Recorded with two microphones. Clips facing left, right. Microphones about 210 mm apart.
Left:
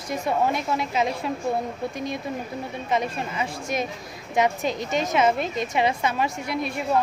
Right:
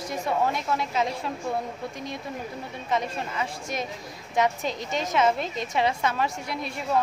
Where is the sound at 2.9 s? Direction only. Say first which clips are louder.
Left 2 dB; 15° left (ahead or behind).